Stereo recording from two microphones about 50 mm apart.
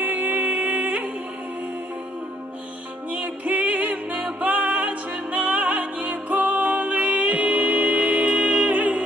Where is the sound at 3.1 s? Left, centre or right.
Right.